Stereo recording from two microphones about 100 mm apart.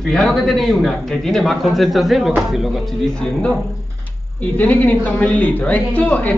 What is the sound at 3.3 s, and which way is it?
A man's voice, 20° left (ahead or behind).